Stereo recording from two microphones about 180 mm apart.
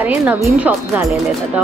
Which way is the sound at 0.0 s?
10° right (ahead or behind).